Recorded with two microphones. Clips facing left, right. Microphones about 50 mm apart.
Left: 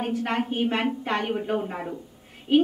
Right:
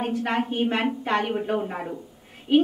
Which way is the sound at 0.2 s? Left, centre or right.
Centre.